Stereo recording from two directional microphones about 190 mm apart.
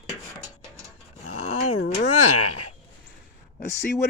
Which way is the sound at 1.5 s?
35° left (ahead or behind).